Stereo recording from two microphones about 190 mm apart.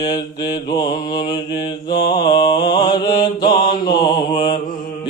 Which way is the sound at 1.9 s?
25° left (ahead or behind).